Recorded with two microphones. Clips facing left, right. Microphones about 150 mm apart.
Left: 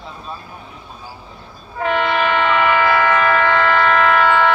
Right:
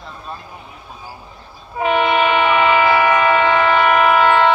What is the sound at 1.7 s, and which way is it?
Train, 15° right (ahead or behind).